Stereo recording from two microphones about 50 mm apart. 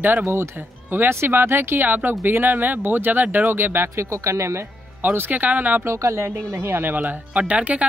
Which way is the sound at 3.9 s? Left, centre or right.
Right.